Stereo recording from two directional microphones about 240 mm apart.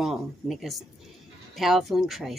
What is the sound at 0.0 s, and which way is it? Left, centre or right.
Speech, centre.